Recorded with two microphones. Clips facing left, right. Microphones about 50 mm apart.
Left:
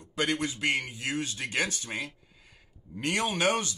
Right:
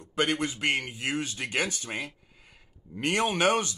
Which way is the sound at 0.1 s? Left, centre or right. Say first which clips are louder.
Right 2 dB; right.